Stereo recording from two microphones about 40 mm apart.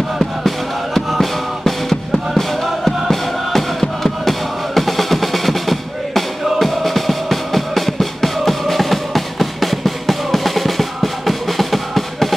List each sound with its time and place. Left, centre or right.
0.9 s music: centre